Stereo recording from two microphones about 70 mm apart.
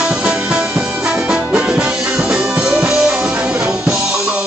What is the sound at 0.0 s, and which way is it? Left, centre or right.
Music, centre.